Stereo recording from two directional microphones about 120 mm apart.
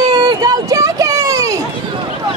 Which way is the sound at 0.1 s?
40° right (ahead or behind).